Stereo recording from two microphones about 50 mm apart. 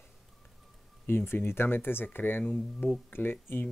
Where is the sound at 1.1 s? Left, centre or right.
Left.